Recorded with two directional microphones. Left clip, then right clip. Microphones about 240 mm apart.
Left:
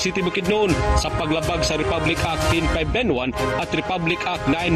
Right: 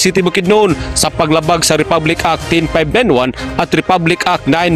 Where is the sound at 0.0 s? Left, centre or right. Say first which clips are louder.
Right 10 dB; right.